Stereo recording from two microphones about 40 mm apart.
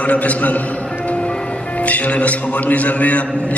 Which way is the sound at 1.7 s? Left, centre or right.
Left.